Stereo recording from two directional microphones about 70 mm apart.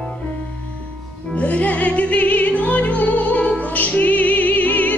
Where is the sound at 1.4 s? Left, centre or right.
Left.